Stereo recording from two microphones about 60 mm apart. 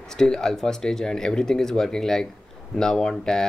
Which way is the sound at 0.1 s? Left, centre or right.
Centre.